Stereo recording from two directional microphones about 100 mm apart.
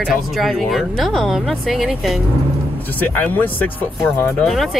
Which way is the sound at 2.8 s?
20° left (ahead or behind).